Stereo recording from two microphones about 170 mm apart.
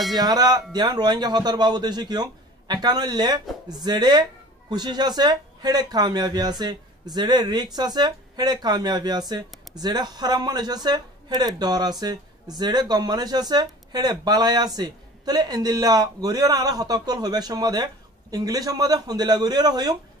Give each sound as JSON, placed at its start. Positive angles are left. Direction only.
{"t": 0.1, "sound": "speech", "side_deg": -25}